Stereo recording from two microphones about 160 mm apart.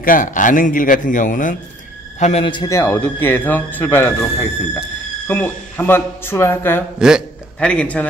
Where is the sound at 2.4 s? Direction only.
30° left (ahead or behind).